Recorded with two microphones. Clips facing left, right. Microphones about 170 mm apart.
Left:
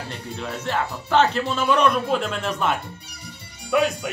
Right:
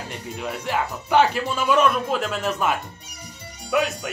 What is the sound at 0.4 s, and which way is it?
Speech, 10° right (ahead or behind).